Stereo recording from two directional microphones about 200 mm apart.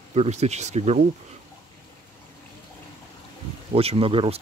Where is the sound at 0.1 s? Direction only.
30° right (ahead or behind).